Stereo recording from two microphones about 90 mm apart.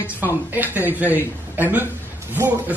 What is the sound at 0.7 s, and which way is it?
Speech, 20° right (ahead or behind).